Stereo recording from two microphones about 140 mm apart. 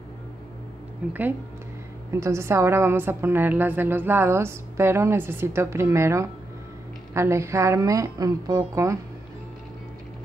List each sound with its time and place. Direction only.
1.0 s a woman's voice: 10° right (ahead or behind)
2.1 s a woman's voice: 20° right (ahead or behind)